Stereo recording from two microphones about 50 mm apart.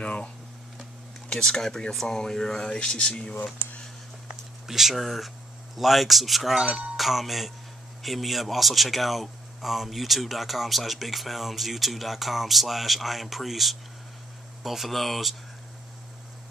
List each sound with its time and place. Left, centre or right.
0.0 s a sound: centre
1.3 s speech: centre
4.6 s speech: centre